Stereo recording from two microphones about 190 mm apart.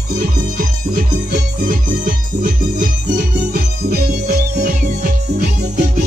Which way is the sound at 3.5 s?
55° right (ahead or behind).